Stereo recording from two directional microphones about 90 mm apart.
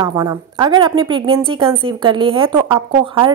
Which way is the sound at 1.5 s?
75° right (ahead or behind).